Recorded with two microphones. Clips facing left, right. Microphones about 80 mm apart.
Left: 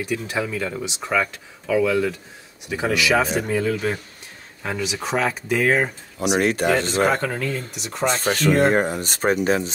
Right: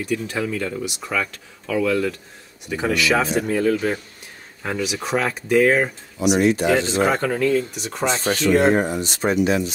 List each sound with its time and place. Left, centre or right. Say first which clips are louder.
0.0 s speech: right 1 dB; centre
6.2 s speech: right 2 dB; left
7.1 s speech: right 3 dB; centre
8.1 s speech: right 1 dB; left